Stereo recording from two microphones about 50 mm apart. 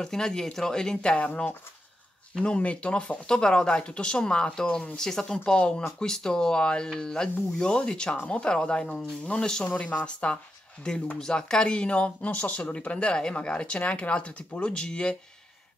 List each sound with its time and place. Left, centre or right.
0.0 s speech: centre
1.1 s speech: left
9.8 s speech: left